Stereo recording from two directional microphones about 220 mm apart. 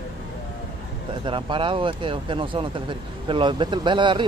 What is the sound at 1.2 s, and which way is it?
Speech, 20° right (ahead or behind).